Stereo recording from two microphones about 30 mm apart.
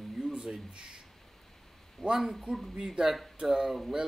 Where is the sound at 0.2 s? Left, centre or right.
Right.